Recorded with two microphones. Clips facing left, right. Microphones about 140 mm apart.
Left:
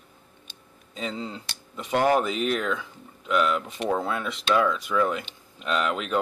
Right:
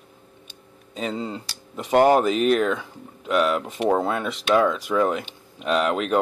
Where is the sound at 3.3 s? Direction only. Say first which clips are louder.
Right 3 dB; 45° right (ahead or behind).